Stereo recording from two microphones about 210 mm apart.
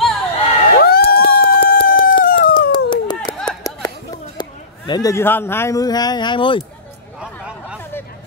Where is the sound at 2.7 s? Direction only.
20° left (ahead or behind).